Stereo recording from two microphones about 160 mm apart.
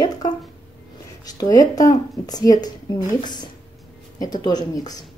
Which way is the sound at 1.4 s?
25° left (ahead or behind).